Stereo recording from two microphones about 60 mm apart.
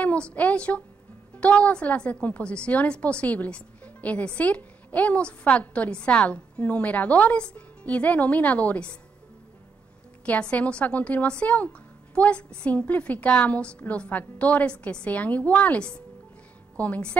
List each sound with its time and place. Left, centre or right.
0.0 s a woman's voice: left
10.2 s a woman's voice: left